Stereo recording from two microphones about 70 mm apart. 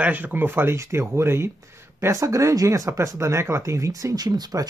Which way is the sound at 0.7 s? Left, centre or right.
Right.